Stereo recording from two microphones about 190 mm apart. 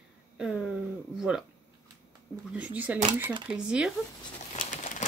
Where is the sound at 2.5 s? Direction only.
5° right (ahead or behind).